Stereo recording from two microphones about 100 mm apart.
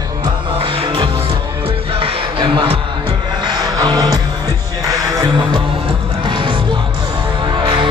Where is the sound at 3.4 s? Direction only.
45° right (ahead or behind).